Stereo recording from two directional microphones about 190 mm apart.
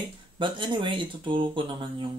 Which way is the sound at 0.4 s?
25° right (ahead or behind).